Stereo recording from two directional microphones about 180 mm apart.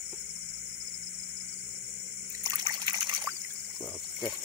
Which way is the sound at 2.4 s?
20° right (ahead or behind).